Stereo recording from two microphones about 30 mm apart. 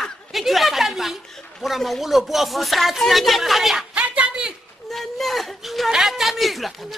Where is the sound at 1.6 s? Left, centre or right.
Centre.